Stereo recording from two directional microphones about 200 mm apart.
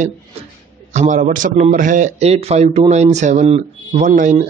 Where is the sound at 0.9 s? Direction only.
40° right (ahead or behind).